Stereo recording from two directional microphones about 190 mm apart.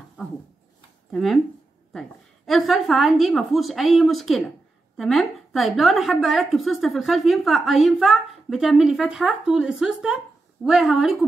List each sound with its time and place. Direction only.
1.1 s a woman's voice: centre (ahead or behind)